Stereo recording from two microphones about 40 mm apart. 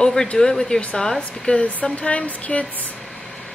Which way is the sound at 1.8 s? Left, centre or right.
Left.